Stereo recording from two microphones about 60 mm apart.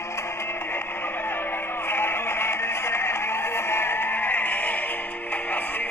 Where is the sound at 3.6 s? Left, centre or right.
Left.